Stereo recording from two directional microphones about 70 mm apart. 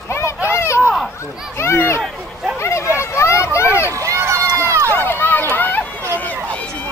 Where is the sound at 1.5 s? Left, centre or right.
Left.